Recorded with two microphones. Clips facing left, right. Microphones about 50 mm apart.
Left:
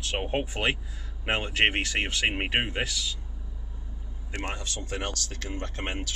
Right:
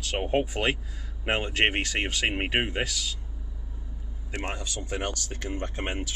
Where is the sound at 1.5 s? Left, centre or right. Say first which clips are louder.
Left 2 dB; centre.